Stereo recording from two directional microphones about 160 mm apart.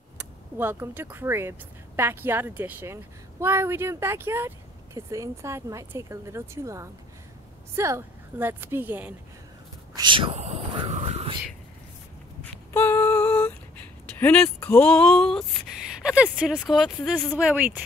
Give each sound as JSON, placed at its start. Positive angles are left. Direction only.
{"t": 0.2, "sound": "a woman's voice", "side_deg": -15}
{"t": 9.9, "sound": "speech", "side_deg": -30}
{"t": 10.9, "sound": "whispering", "side_deg": -45}
{"t": 12.7, "sound": "a sound", "side_deg": 15}
{"t": 14.2, "sound": "a woman's voice", "side_deg": 10}